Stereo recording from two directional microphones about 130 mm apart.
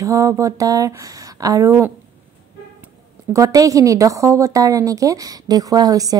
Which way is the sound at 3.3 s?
25° right (ahead or behind).